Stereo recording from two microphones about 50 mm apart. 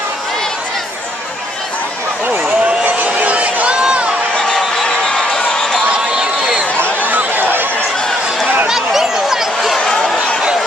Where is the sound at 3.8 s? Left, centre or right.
Centre.